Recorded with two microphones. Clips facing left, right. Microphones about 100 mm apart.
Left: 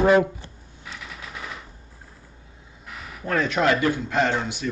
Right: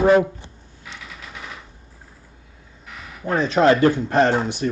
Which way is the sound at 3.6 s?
35° right (ahead or behind).